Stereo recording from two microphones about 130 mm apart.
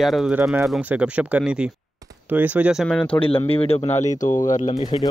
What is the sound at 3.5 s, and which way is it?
Speech, 45° left (ahead or behind).